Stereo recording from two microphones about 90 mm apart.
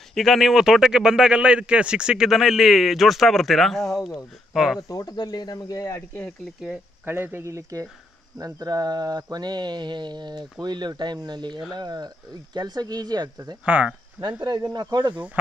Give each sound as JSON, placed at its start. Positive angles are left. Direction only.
{"t": 0.1, "sound": "a man's voice", "side_deg": 0}
{"t": 4.7, "sound": "speech", "side_deg": 40}
{"t": 7.1, "sound": "speech", "side_deg": -25}
{"t": 8.4, "sound": "mantra", "side_deg": -40}
{"t": 13.7, "sound": "speech", "side_deg": -15}
{"t": 14.6, "sound": "mantra", "side_deg": -45}